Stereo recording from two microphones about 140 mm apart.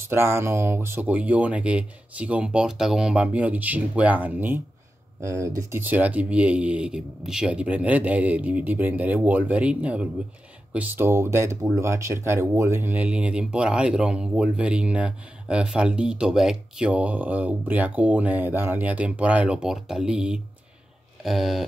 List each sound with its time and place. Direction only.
0.0 s speech: 15° right (ahead or behind); by 21.6 s centre (ahead or behind)